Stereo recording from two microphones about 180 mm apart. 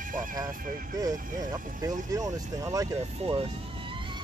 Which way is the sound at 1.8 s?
20° right (ahead or behind).